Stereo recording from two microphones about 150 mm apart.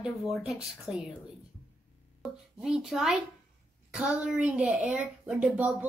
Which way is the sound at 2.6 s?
5° right (ahead or behind).